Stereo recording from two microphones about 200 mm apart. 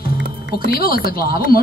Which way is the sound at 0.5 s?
50° left (ahead or behind).